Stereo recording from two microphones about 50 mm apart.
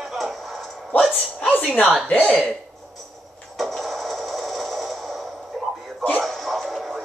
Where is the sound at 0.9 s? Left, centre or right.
Left.